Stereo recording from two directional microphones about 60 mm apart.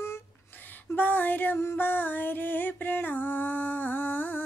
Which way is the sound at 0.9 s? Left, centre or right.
Left.